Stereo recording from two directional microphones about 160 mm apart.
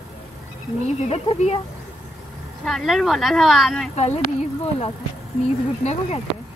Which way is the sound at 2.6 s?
Centre (ahead or behind).